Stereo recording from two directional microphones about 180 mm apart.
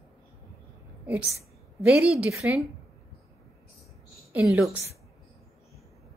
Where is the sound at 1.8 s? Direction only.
5° right (ahead or behind).